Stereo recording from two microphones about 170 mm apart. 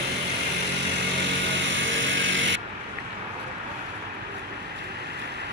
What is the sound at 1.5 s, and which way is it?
Music, 90° right.